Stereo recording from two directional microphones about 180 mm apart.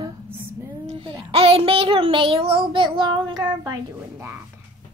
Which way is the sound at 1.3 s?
30° right (ahead or behind).